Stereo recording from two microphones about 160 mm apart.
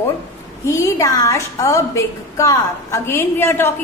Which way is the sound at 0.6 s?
20° left (ahead or behind).